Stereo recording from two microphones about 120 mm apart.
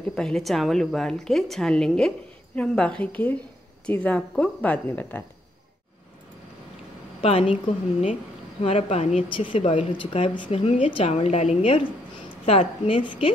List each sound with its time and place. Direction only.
0.1 s a woman's voice: 5° left (ahead or behind)
7.2 s a woman's voice: 60° left (ahead or behind)
8.6 s a woman's voice: 60° left (ahead or behind)
9.3 s a woman's voice: 45° left (ahead or behind)